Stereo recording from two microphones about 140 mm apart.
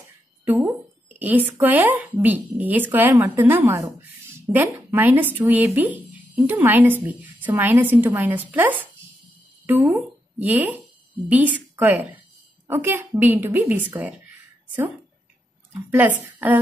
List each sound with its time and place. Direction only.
0.5 s a woman's voice: 15° right (ahead or behind)
15.9 s speech: 15° right (ahead or behind)